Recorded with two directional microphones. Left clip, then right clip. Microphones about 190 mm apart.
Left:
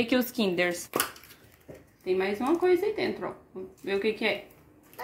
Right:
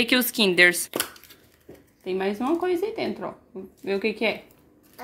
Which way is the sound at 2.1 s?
45° right (ahead or behind).